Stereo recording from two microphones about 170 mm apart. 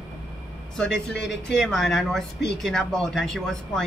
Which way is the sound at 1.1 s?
90° left.